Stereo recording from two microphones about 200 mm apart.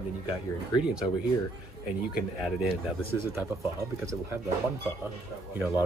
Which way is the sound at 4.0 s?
15° right (ahead or behind).